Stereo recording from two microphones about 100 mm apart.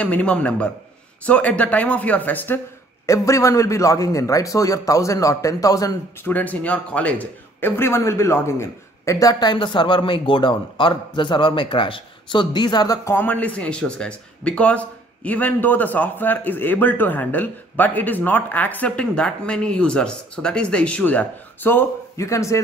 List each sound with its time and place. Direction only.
0.0 s speech: 15° left (ahead or behind)
3.1 s a man's voice: 30° left (ahead or behind)
6.2 s a man's voice: 15° left (ahead or behind); by 13.1 s 40° left (ahead or behind)
13.1 s speech: 15° left (ahead or behind)
22.1 s a man's voice: 30° left (ahead or behind)